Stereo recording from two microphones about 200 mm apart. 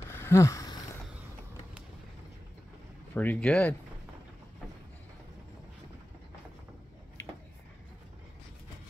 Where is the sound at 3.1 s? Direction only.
5° left (ahead or behind).